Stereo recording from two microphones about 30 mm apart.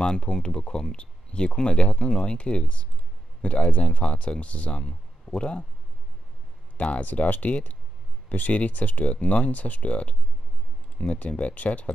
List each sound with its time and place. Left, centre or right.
0.0 s speech: left
6.8 s speech: left
7.2 s speech: left
8.5 s speech: left
9.1 s speech: left